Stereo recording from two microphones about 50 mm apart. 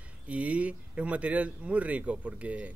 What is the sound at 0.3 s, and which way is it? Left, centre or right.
Speech, right.